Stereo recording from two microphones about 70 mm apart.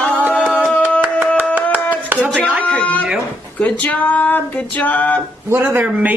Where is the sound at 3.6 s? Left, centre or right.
Left.